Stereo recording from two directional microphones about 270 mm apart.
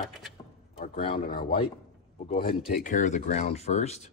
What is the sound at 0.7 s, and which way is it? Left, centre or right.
Speech, left.